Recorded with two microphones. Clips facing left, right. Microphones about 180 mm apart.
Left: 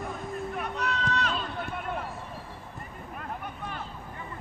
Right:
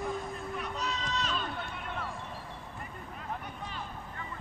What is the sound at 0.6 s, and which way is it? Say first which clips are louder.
Run: left 4 dB; 60° left (ahead or behind).